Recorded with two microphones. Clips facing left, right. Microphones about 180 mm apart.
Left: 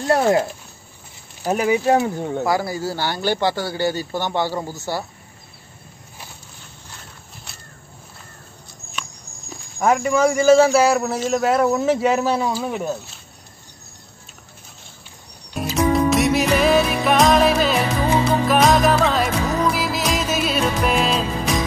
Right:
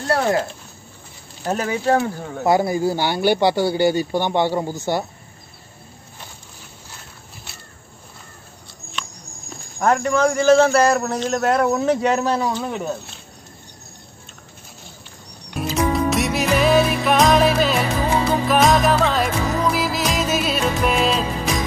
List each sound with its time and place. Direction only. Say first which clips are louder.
0.0 s speech: left 3 dB; 20° left (ahead or behind)
1.4 s speech: left 3 dB; 10° left (ahead or behind)
2.4 s speech: right 7 dB; 20° right (ahead or behind)
9.8 s a man's voice: left 1 dB; 5° left (ahead or behind)
15.9 s music: left 7 dB; centre (ahead or behind)